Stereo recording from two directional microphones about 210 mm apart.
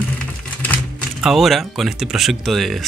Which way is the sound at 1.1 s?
Centre (ahead or behind).